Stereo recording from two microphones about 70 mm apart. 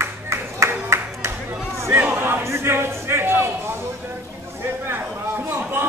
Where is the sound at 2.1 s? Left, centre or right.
Right.